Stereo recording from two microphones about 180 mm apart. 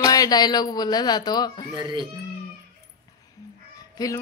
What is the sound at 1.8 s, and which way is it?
Speech, 25° right (ahead or behind).